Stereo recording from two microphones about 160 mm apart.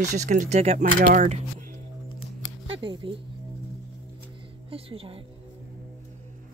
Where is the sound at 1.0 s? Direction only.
60° right (ahead or behind).